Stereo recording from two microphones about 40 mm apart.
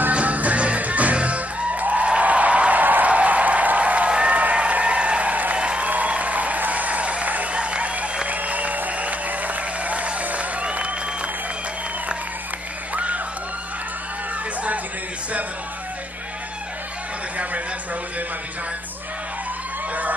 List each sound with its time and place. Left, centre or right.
0.1 s music: right
2.8 s a sound: right
3.1 s applause: right
5.6 s applause: right
5.9 s applause: right
12.9 s a sound: right